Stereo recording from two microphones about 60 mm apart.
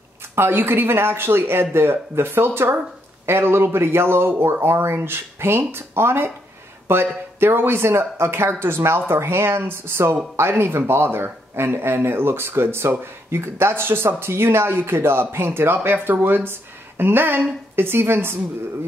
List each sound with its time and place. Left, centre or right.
0.4 s speech: right